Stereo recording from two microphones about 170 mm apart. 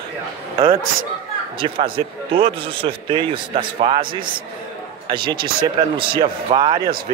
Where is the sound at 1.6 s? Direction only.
30° right (ahead or behind).